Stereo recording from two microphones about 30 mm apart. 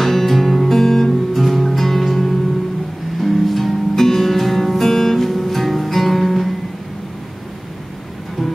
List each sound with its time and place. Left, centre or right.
0.0 s music: centre